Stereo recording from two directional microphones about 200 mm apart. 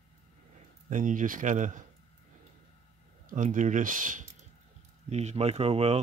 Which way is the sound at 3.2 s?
40° right (ahead or behind).